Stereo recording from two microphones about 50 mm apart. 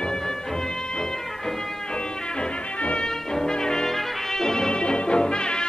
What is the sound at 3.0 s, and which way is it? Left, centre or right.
Brass instrument, centre.